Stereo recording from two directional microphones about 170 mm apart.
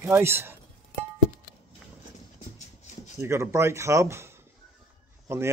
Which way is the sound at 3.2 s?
15° right (ahead or behind).